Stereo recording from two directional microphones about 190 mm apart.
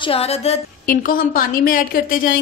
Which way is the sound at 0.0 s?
30° left (ahead or behind).